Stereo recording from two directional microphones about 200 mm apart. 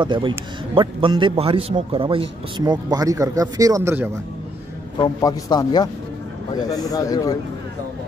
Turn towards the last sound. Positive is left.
turn(degrees=15)  # may be behind; listen again after turning